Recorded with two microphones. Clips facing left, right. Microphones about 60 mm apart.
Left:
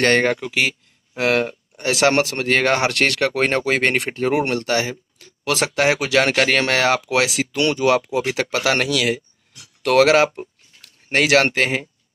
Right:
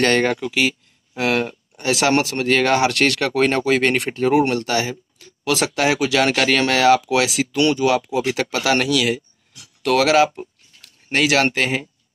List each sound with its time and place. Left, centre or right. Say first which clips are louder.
0.0 s speech: even; left
7.3 s speech: right 2 dB; left